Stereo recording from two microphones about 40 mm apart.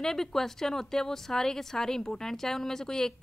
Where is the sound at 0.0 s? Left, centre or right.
Centre.